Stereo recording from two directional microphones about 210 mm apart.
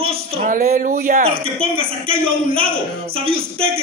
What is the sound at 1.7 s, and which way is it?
A man's voice, 25° right (ahead or behind).